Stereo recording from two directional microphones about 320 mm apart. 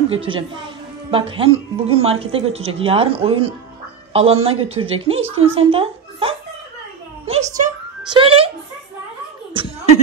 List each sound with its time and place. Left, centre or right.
0.1 s a woman's voice: centre
7.2 s a sound: centre
8.1 s speech: centre
9.5 s chuckle: centre